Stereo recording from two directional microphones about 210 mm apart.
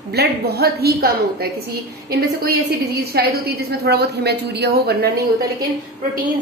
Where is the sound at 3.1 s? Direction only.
50° right (ahead or behind).